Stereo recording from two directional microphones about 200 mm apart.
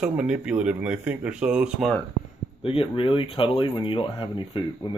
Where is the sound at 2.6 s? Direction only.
25° left (ahead or behind).